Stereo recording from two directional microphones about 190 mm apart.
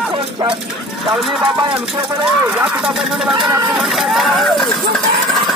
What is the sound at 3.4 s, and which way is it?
Speech, 15° right (ahead or behind).